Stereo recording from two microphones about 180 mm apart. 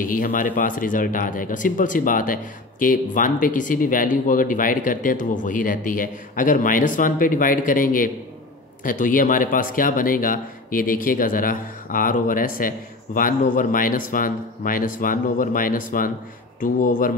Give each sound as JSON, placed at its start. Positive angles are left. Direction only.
{"t": 0.0, "sound": "speech", "side_deg": 50}